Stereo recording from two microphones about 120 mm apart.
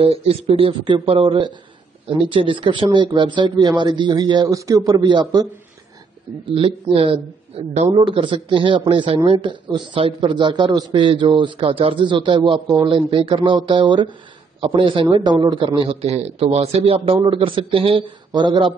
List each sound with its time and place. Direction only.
0.0 s a man's voice: 55° right (ahead or behind); by 5.4 s 35° right (ahead or behind)
6.4 s a man's voice: 50° right (ahead or behind)
8.0 s a man's voice: 45° right (ahead or behind)
17.2 s a man's voice: 45° right (ahead or behind)